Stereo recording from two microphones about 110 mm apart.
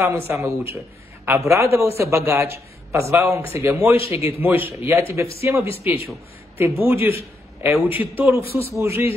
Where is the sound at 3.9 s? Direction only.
60° left (ahead or behind).